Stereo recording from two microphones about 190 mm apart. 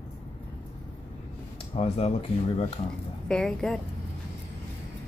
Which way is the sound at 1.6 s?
35° left (ahead or behind).